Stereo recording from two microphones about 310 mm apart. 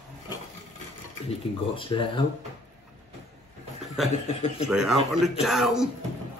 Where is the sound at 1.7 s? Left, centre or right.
Centre.